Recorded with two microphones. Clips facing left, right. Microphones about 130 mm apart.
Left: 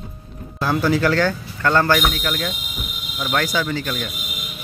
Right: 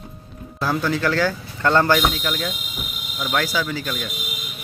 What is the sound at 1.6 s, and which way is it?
A man's voice, 15° right (ahead or behind).